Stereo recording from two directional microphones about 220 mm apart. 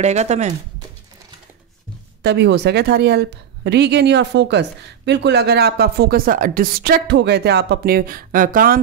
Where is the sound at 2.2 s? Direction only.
50° right (ahead or behind).